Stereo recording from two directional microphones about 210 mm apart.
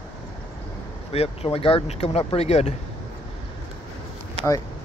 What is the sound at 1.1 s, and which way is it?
Speech, 30° left (ahead or behind).